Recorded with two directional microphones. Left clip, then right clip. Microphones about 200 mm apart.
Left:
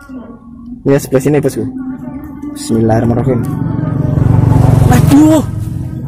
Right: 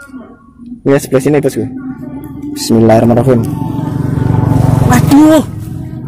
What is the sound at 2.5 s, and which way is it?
Speech, 25° right (ahead or behind).